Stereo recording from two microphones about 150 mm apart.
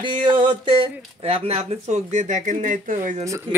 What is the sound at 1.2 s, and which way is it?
Speech, 40° right (ahead or behind).